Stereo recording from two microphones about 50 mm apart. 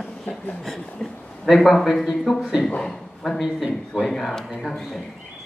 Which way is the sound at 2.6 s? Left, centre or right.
Centre.